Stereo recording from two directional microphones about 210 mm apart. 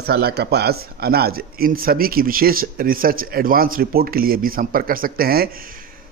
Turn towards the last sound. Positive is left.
turn(degrees=-45)  # may be behind; listen again after turning